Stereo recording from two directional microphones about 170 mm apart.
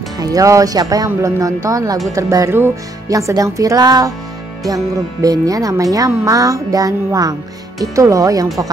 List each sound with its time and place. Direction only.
0.2 s a child's voice: 20° right (ahead or behind)
5.2 s a child's voice: 20° right (ahead or behind)